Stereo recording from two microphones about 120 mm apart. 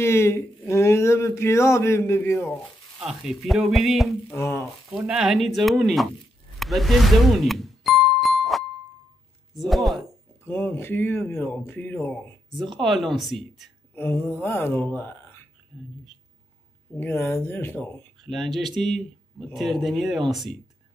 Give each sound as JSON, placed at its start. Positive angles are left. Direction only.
{"t": 0.0, "sound": "speech", "side_deg": 20}
{"t": 3.0, "sound": "speech", "side_deg": -5}
{"t": 4.3, "sound": "speech", "side_deg": 20}
{"t": 4.9, "sound": "speech", "side_deg": -5}
{"t": 6.6, "sound": "music", "side_deg": 0}
{"t": 9.5, "sound": "speech", "side_deg": 0}
{"t": 10.4, "sound": "speech", "side_deg": 20}
{"t": 12.7, "sound": "speech", "side_deg": 0}
{"t": 13.9, "sound": "speech", "side_deg": 20}
{"t": 16.9, "sound": "speech", "side_deg": 15}
{"t": 18.2, "sound": "speech", "side_deg": 0}